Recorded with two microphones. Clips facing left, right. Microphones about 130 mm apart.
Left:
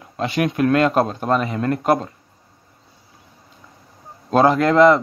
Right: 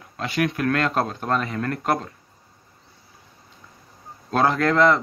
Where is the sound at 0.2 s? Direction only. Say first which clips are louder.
Left 4 dB; 20° left (ahead or behind).